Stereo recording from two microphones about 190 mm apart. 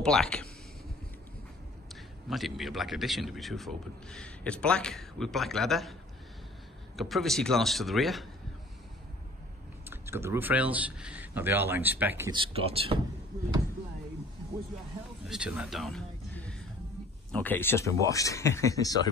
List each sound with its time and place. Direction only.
0.0 s speech: 5° left (ahead or behind)
2.2 s a man's voice: centre (ahead or behind)
7.0 s a man's voice: centre (ahead or behind)
9.8 s speech: 10° right (ahead or behind)
12.3 s speech: 30° right (ahead or behind)
15.2 s a sound: 5° right (ahead or behind)
17.3 s speech: 10° left (ahead or behind)